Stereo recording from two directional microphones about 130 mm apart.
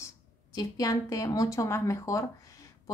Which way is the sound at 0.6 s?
25° left (ahead or behind).